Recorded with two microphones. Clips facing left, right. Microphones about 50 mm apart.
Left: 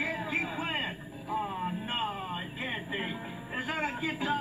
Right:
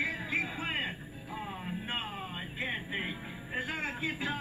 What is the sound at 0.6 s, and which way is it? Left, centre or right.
Music, centre.